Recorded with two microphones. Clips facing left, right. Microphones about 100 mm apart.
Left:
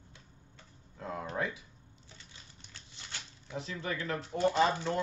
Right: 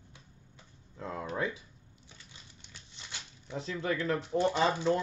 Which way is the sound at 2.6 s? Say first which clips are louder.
Even; 15° right (ahead or behind).